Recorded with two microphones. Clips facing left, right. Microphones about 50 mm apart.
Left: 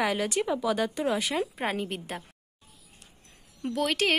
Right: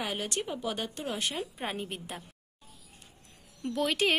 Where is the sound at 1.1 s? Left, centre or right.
Left.